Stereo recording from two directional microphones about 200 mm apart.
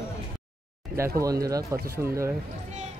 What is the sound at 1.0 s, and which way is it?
Speech, 15° right (ahead or behind).